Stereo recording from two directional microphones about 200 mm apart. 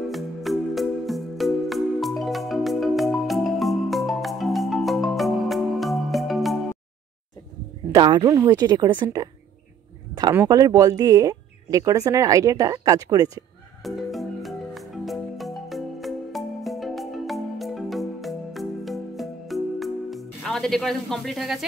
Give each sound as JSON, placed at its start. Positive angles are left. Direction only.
{"t": 0.1, "sound": "music", "side_deg": 0}
{"t": 7.9, "sound": "speech", "side_deg": -20}
{"t": 13.8, "sound": "music", "side_deg": 0}